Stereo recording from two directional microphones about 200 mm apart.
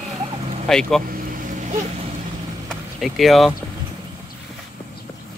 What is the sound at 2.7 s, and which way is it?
Speech, centre (ahead or behind).